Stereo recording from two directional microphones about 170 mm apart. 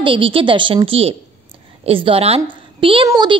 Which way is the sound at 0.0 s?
30° right (ahead or behind).